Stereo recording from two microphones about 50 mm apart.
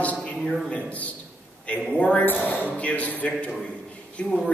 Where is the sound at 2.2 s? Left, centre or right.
Left.